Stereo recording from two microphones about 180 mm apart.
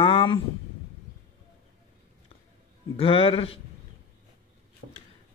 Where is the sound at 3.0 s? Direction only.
30° left (ahead or behind).